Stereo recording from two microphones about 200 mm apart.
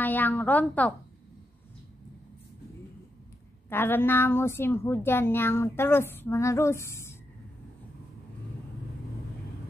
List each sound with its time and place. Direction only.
0.0 s a woman's voice: 10° left (ahead or behind)
3.6 s a woman's voice: 10° left (ahead or behind)